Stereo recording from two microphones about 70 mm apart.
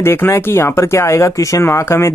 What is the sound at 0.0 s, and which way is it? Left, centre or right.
Speech, left.